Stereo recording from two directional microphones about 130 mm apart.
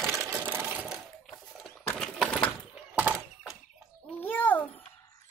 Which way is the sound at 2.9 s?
15° right (ahead or behind).